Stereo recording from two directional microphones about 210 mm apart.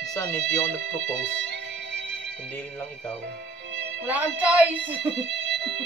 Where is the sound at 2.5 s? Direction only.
5° left (ahead or behind).